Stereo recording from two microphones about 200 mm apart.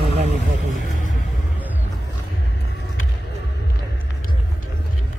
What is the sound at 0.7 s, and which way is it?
Music, 40° left (ahead or behind).